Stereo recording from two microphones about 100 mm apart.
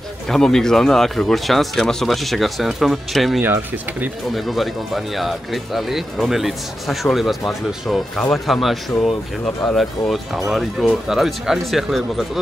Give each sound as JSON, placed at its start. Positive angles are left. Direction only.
{"t": 0.3, "sound": "speech", "side_deg": 5}
{"t": 3.3, "sound": "speech", "side_deg": -15}
{"t": 4.4, "sound": "speech", "side_deg": 0}